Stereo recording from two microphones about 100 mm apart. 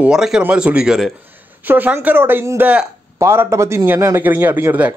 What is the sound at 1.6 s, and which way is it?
Speech, 20° right (ahead or behind).